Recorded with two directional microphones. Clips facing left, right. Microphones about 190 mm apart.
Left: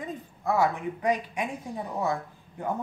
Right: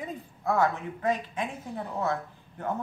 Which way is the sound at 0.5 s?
10° left (ahead or behind).